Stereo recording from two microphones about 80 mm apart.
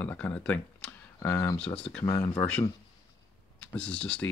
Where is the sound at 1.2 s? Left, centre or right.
Left.